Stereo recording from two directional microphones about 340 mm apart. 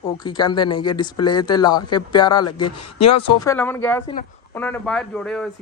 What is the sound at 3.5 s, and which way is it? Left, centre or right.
Speech, centre.